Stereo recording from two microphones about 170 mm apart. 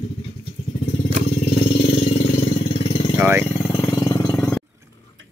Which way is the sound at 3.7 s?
20° left (ahead or behind).